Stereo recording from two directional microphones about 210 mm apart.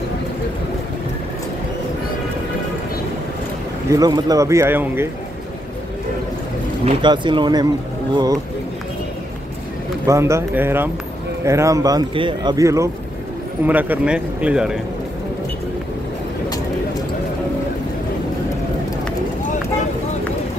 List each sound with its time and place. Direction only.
3.9 s speech: 15° right (ahead or behind)
7.0 s speech: 20° right (ahead or behind)
10.0 s speech: 15° right (ahead or behind)